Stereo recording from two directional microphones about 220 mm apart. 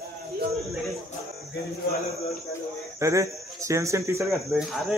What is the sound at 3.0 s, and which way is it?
Speech, 15° right (ahead or behind).